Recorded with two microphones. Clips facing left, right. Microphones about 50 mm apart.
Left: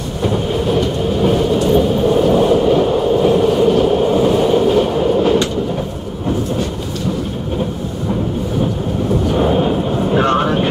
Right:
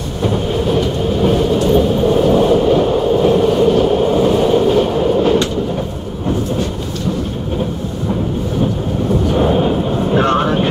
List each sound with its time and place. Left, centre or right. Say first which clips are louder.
0.7 s vehicle: even; centre
9.3 s vehicle: right 1 dB; centre